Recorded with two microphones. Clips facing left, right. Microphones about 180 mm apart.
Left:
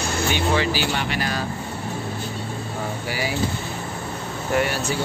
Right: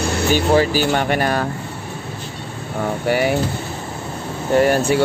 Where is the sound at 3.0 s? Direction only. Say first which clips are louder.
Right 12 dB; 60° right (ahead or behind).